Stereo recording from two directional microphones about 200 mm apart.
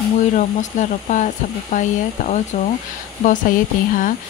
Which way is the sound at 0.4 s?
40° left (ahead or behind).